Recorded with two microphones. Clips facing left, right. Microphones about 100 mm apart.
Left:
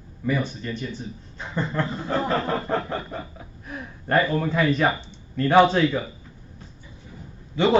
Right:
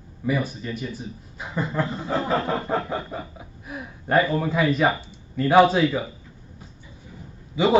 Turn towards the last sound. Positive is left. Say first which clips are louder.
# even
turn(degrees=-5)  # may be behind; listen again after turning